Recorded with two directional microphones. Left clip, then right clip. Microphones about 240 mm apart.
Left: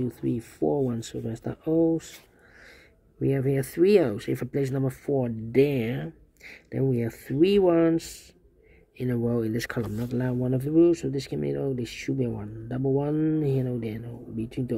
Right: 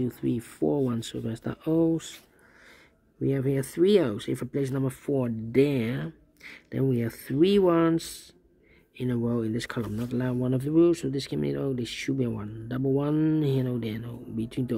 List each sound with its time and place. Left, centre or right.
0.0 s speech: centre
3.2 s speech: centre
5.6 s speech: right
5.9 s speech: centre